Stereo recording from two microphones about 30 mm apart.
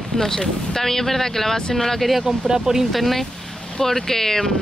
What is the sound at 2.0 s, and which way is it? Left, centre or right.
Speech, centre.